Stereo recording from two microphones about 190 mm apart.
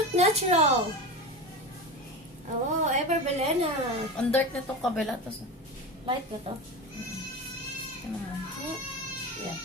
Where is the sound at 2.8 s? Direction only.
40° right (ahead or behind).